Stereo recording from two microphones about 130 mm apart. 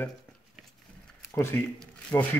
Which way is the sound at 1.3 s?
15° left (ahead or behind).